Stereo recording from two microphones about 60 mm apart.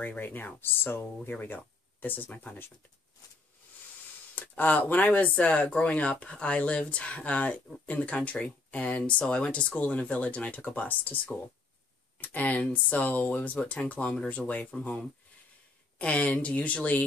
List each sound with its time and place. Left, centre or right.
0.0 s speech: left
4.4 s speech: left
12.2 s speech: left